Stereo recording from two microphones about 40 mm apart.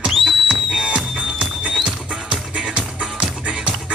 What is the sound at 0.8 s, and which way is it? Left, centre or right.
Music, right.